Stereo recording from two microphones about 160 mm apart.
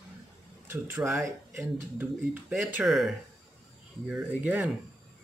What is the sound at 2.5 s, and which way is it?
Speech, centre (ahead or behind).